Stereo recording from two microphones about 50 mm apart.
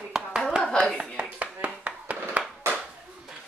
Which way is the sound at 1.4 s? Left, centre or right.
Right.